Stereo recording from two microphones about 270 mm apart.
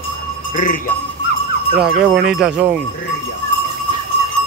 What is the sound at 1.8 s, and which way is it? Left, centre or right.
Speech, centre.